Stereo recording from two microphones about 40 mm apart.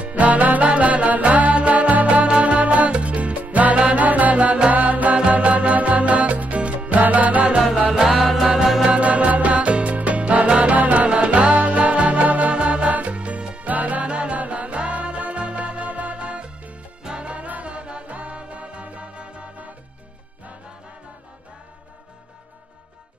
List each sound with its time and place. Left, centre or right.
0.0 s music: right
8.1 s music: centre
8.8 s music: right
13.7 s music: right
14.0 s music: right